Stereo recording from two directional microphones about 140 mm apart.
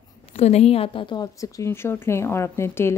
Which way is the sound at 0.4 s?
50° left (ahead or behind).